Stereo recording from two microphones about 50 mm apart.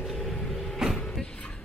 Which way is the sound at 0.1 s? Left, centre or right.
Centre.